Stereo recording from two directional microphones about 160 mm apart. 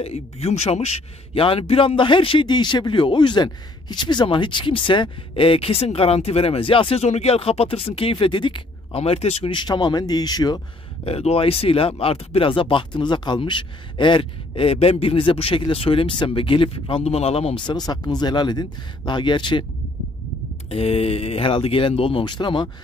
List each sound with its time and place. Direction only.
0.0 s a man's voice: 40° left (ahead or behind); by 10.6 s 25° left (ahead or behind)
11.1 s a man's voice: 40° left (ahead or behind)
20.7 s a man's voice: 40° left (ahead or behind)